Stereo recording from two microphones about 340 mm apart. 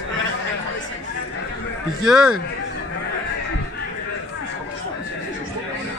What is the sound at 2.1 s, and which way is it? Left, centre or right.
Speech, centre.